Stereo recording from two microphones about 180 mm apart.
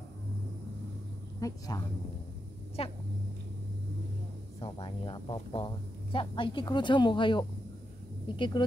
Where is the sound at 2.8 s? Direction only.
30° left (ahead or behind).